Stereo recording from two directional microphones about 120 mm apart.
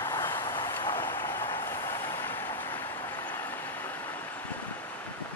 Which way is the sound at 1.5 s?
20° left (ahead or behind).